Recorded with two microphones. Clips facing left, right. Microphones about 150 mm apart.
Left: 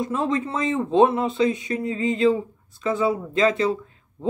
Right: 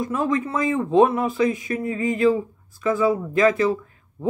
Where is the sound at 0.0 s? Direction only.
30° left (ahead or behind).